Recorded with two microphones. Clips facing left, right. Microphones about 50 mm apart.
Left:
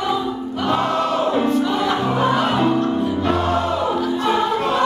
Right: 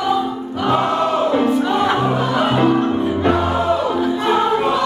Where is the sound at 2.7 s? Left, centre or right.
Right.